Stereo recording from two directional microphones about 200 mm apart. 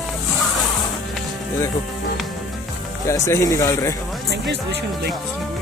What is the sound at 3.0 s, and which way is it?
Speech, 15° left (ahead or behind).